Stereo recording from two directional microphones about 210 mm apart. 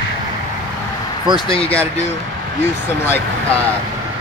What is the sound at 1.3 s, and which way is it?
Speech, 25° left (ahead or behind).